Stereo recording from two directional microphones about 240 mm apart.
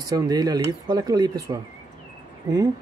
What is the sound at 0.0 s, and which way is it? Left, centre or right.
Speech, centre.